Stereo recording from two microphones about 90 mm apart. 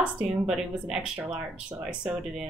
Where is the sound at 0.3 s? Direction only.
5° right (ahead or behind).